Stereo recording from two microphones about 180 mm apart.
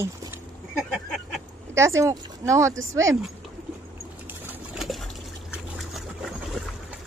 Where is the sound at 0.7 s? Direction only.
Centre (ahead or behind).